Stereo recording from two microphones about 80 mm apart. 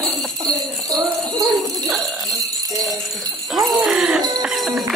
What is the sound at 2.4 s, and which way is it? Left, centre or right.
Jingle bell, right.